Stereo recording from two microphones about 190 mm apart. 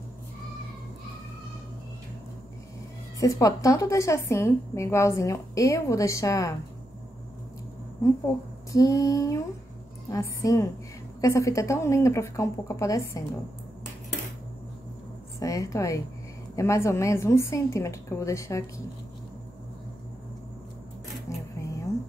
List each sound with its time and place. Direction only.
3.2 s a woman's voice: 20° left (ahead or behind)
8.7 s a woman's voice: 15° left (ahead or behind)
15.4 s a woman's voice: 15° left (ahead or behind)